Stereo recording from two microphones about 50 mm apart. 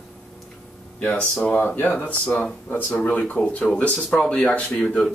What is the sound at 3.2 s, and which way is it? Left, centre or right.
Speech, left.